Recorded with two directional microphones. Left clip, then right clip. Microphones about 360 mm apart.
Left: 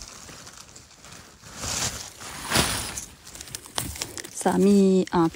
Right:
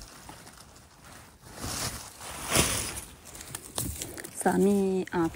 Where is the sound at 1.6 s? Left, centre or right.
Centre.